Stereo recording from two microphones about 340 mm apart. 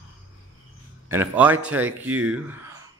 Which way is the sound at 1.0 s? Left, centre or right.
Centre.